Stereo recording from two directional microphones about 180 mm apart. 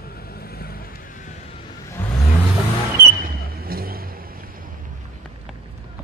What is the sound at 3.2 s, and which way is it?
Vehicle, 55° right (ahead or behind).